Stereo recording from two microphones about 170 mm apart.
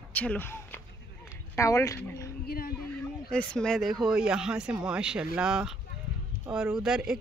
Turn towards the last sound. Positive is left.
turn(degrees=-5)  # may be behind; listen again after turning